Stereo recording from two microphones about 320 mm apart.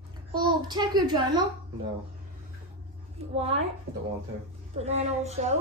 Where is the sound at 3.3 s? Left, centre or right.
Centre.